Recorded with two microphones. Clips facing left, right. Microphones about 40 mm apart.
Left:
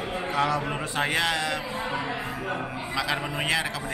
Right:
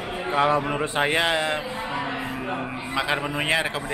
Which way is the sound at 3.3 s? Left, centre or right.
Right.